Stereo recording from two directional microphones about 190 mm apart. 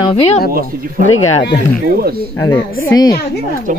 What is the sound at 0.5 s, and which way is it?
Speech, 50° right (ahead or behind).